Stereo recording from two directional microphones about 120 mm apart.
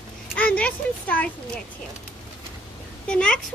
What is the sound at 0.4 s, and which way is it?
Speech, 10° left (ahead or behind).